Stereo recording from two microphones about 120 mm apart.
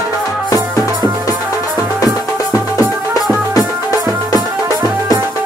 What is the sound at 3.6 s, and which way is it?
Music, 30° left (ahead or behind).